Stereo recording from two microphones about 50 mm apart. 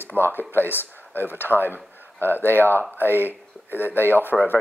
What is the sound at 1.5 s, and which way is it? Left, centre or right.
Speech, right.